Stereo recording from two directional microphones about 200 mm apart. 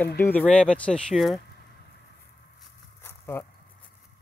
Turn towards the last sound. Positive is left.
turn(degrees=15)  # may be behind; listen again after turning